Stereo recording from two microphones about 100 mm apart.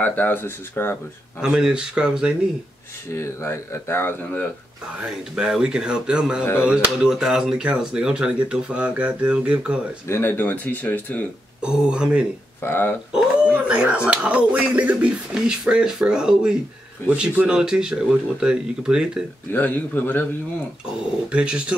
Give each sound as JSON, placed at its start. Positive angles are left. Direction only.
{"t": 0.0, "sound": "speech", "side_deg": 15}
{"t": 1.4, "sound": "speech", "side_deg": -10}
{"t": 3.2, "sound": "speech", "side_deg": 25}
{"t": 5.0, "sound": "speech", "side_deg": -5}
{"t": 10.0, "sound": "speech", "side_deg": 25}
{"t": 10.3, "sound": "speech", "side_deg": 15}
{"t": 11.6, "sound": "speech", "side_deg": -10}
{"t": 12.6, "sound": "speech", "side_deg": 20}
{"t": 13.1, "sound": "speech", "side_deg": -10}
{"t": 19.5, "sound": "speech", "side_deg": 20}
{"t": 21.3, "sound": "speech", "side_deg": -10}